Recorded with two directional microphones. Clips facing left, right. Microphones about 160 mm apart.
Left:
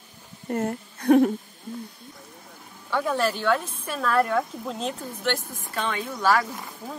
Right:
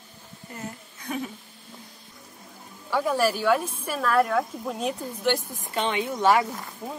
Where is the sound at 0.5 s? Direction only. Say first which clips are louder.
Left 11 dB; 60° left (ahead or behind).